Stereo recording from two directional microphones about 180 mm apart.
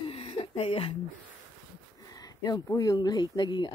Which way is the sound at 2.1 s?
20° left (ahead or behind).